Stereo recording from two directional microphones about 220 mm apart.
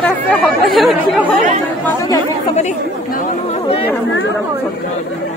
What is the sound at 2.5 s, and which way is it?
Speech, 35° left (ahead or behind).